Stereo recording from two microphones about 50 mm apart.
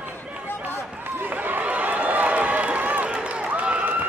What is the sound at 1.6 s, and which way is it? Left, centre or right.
Run, right.